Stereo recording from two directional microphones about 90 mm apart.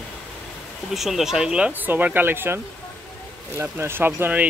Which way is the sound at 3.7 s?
25° right (ahead or behind).